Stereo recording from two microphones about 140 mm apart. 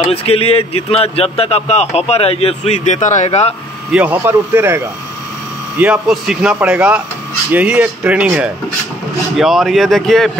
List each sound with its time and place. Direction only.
0.1 s speech: 45° left (ahead or behind)
3.9 s speech: 10° right (ahead or behind)
5.8 s speech: 5° right (ahead or behind)
9.4 s speech: centre (ahead or behind)